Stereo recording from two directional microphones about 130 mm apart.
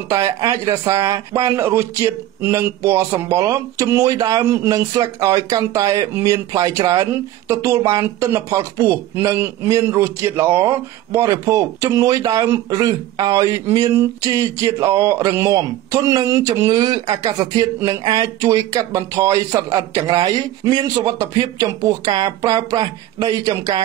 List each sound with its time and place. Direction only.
0.1 s speech: 25° right (ahead or behind)